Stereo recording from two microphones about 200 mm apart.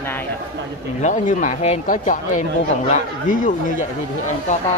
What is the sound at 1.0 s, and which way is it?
Speech, 40° left (ahead or behind).